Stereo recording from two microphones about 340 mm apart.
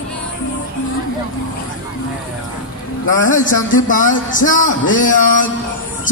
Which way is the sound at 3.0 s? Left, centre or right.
Left.